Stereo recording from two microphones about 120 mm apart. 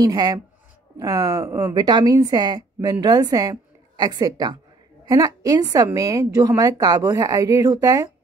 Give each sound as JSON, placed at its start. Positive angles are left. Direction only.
{"t": 0.0, "sound": "a woman's voice", "side_deg": -35}